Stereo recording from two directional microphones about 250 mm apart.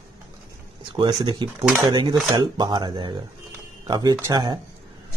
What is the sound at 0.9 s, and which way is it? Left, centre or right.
Speech, centre.